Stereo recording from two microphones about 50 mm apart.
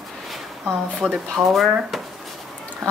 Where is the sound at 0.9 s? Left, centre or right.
Centre.